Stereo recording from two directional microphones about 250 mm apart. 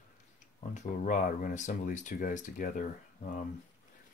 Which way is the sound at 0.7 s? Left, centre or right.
Left.